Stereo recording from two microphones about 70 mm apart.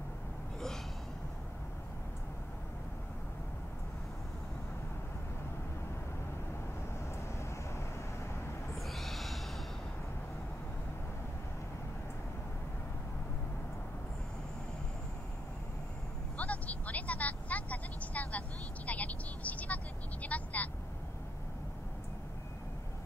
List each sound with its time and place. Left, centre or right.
8.7 s owl: centre
16.3 s vehicle: left